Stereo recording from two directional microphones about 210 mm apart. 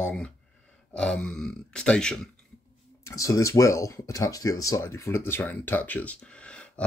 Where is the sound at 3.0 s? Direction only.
15° left (ahead or behind).